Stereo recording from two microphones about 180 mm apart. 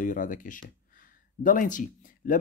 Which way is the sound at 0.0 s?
45° left (ahead or behind).